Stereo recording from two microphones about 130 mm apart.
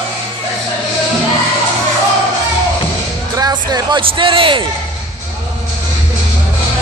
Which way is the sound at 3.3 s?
30° right (ahead or behind).